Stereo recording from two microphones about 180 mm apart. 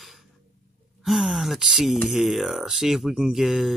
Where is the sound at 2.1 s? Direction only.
Centre (ahead or behind).